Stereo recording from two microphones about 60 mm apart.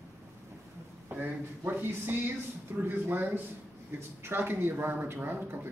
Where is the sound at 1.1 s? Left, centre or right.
Right.